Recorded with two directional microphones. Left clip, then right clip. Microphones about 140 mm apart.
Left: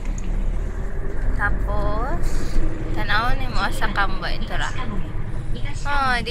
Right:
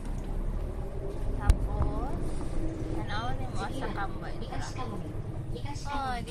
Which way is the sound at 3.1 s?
20° left (ahead or behind).